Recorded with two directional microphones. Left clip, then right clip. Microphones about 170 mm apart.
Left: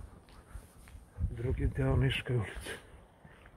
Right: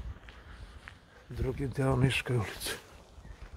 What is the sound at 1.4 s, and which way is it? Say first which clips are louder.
Speech: right 3 dB; 15° right (ahead or behind).